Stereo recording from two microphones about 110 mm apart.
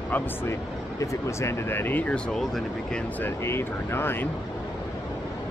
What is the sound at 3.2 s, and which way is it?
Speech, 20° left (ahead or behind).